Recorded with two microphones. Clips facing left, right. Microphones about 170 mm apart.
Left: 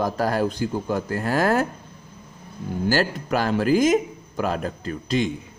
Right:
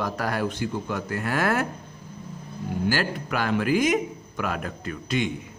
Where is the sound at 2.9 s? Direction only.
35° left (ahead or behind).